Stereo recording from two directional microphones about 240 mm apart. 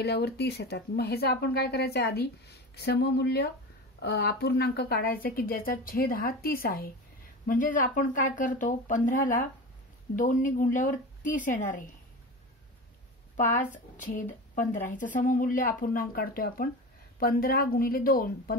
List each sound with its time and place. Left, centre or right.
0.0 s a woman's voice: left
14.0 s a woman's voice: left